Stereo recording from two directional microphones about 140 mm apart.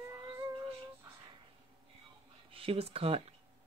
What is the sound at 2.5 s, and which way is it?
Speech, 40° right (ahead or behind).